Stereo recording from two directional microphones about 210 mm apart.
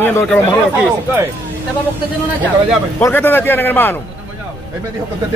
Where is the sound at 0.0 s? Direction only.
10° left (ahead or behind).